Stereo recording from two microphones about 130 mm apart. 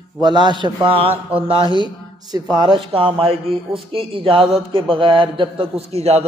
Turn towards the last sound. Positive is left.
turn(degrees=-55)  # may be behind; listen again after turning